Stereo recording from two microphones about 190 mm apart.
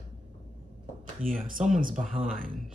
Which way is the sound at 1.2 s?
45° right (ahead or behind).